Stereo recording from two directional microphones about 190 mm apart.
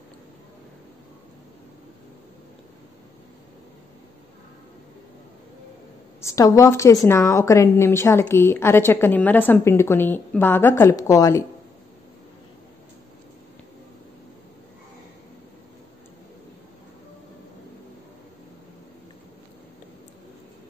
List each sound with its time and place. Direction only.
6.2 s a woman's voice: 15° left (ahead or behind)